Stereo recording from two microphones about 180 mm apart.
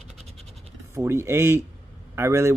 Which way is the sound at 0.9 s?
15° right (ahead or behind).